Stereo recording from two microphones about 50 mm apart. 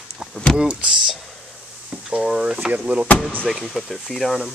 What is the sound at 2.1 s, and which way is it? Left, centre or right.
Speech, centre.